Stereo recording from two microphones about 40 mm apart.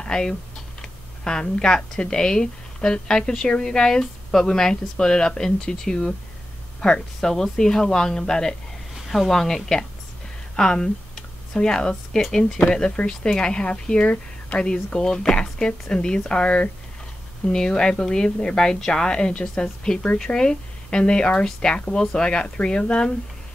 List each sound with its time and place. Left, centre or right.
0.0 s speech: centre
7.2 s speech: centre
12.7 s speech: left